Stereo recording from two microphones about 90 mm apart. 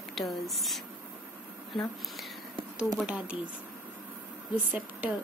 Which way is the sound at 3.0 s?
15° right (ahead or behind).